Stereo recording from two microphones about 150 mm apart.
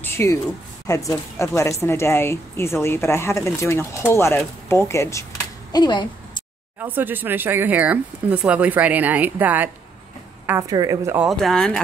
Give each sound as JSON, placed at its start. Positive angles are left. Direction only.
{"t": 0.0, "sound": "a woman's voice", "side_deg": 15}
{"t": 5.7, "sound": "a sound", "side_deg": 30}
{"t": 6.8, "sound": "speech", "side_deg": -15}
{"t": 10.7, "sound": "a woman's voice", "side_deg": -25}
{"t": 11.2, "sound": "speech", "side_deg": 0}